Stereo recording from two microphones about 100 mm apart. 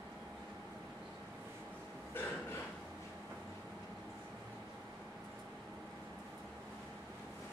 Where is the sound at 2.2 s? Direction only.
20° left (ahead or behind).